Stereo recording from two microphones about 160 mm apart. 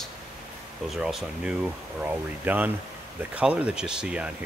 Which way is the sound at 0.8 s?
Centre (ahead or behind).